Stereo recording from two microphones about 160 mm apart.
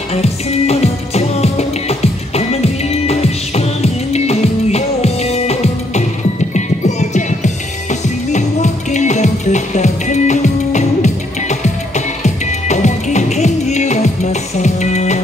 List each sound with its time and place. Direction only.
0.1 s music: 40° left (ahead or behind)